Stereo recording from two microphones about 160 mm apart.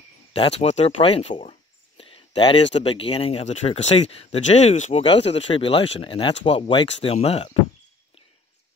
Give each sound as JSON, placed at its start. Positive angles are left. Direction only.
{"t": 0.3, "sound": "speech", "side_deg": 40}